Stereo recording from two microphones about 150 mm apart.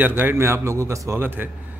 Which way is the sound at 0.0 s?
15° right (ahead or behind).